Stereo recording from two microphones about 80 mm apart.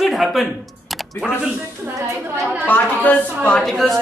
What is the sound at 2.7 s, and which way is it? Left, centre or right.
Speech, left.